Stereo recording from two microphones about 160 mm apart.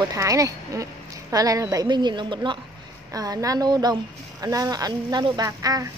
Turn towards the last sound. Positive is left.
turn(degrees=-20)  # may be behind; listen again after turning